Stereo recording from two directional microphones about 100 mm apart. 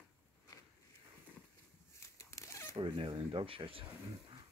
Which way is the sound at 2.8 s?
60° right (ahead or behind).